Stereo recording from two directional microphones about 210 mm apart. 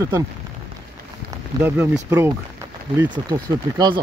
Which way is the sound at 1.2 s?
10° right (ahead or behind).